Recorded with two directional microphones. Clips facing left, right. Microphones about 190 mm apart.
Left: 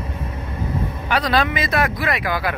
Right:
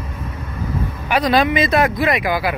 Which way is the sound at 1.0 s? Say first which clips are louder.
Right 4 dB; 15° right (ahead or behind).